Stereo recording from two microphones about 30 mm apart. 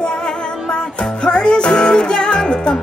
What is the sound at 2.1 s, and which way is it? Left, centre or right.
Music, left.